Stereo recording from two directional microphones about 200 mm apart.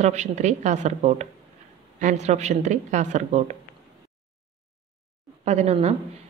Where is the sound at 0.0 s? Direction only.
35° right (ahead or behind).